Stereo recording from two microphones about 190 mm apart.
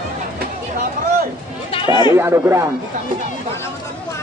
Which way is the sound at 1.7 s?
25° left (ahead or behind).